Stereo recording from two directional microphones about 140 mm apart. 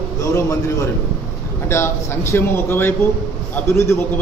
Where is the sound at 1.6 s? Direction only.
20° left (ahead or behind).